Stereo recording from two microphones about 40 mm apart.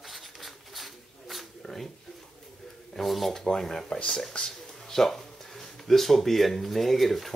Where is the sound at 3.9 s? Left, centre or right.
Left.